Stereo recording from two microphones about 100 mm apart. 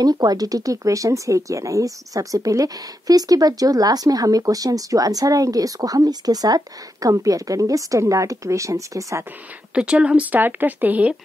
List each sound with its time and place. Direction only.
0.0 s speech: 40° right (ahead or behind)
9.8 s speech: 10° right (ahead or behind)